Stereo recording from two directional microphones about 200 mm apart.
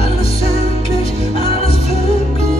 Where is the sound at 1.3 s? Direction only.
30° left (ahead or behind).